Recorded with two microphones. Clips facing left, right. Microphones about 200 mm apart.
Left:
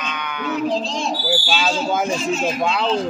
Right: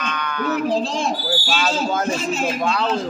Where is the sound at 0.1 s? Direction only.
15° left (ahead or behind).